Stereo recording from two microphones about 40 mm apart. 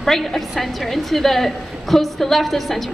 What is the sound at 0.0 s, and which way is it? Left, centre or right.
A woman's voice, centre.